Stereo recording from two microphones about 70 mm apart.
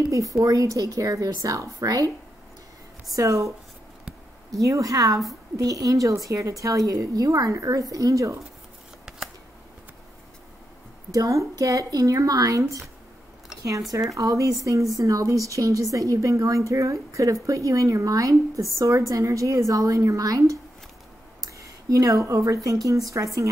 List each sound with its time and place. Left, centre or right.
0.1 s a woman's voice: right
3.1 s a woman's voice: right
11.1 s a woman's voice: right
14.1 s a woman's voice: right